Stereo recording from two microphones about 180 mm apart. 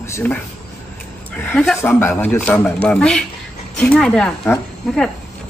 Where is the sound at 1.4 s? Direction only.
10° left (ahead or behind).